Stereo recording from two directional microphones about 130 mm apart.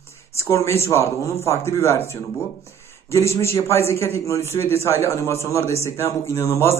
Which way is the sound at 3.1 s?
20° left (ahead or behind).